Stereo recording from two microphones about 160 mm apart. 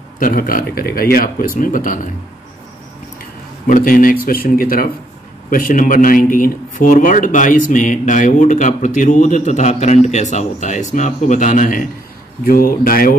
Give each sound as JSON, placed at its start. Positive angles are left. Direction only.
{"t": 0.2, "sound": "speech", "side_deg": 60}
{"t": 3.6, "sound": "speech", "side_deg": 60}